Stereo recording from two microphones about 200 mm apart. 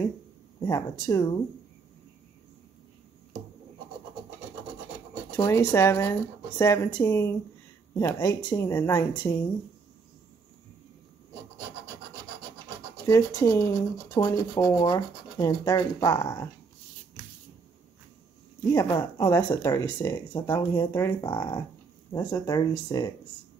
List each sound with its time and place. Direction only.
0.6 s speech: 15° left (ahead or behind)
5.3 s speech: 15° left (ahead or behind)
13.0 s speech: 15° left (ahead or behind)
18.7 s speech: 20° left (ahead or behind)